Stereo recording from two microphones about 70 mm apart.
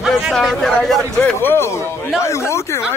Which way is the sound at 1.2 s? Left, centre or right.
Left.